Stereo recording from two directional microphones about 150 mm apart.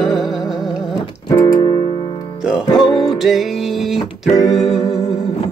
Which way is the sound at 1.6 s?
40° left (ahead or behind).